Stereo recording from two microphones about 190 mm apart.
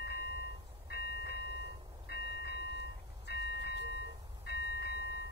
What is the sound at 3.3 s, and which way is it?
Vehicle, 60° left (ahead or behind).